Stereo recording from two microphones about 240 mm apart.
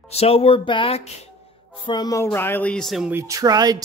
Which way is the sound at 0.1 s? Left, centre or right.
Left.